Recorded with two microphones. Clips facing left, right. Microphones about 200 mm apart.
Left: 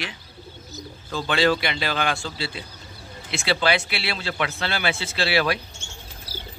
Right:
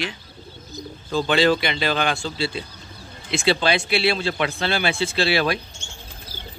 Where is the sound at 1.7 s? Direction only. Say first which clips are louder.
Right 3 dB; 5° left (ahead or behind).